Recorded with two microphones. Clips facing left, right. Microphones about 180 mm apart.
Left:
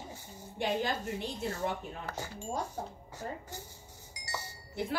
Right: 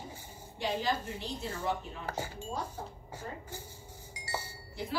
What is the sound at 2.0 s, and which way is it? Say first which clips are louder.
Speech: right 2 dB; 10° right (ahead or behind).